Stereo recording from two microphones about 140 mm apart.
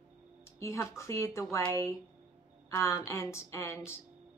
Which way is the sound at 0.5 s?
20° left (ahead or behind).